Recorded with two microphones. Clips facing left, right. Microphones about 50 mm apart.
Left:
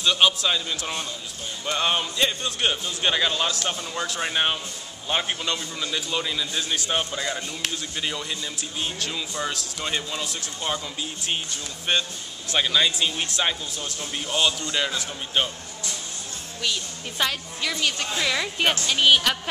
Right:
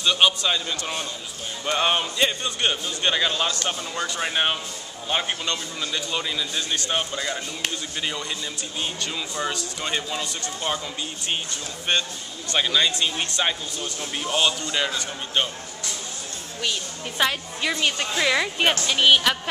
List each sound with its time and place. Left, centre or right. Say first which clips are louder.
0.0 s a man's voice: even; centre
11.9 s a man's voice: even; centre
17.2 s a woman's voice: right 3 dB; centre